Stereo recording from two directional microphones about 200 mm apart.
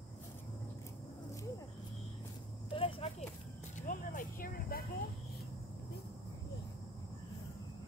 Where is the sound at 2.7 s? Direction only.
25° left (ahead or behind).